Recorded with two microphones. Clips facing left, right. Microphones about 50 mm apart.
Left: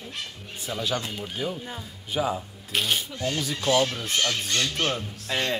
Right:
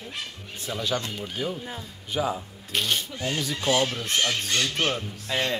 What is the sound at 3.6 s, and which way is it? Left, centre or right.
A woman's voice, centre.